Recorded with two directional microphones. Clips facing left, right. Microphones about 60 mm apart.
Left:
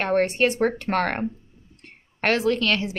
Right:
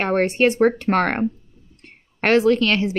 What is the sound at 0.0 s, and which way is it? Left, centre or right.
A woman's voice, right.